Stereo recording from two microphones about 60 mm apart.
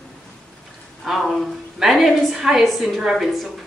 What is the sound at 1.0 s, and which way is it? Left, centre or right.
A woman's voice, centre.